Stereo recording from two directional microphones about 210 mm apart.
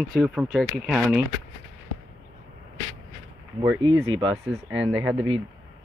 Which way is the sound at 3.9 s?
70° right (ahead or behind).